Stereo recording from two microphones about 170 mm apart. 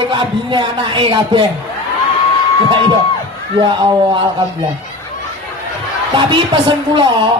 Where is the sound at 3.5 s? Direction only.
30° right (ahead or behind).